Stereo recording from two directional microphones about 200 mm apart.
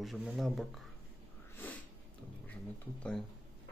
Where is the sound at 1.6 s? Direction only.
10° left (ahead or behind).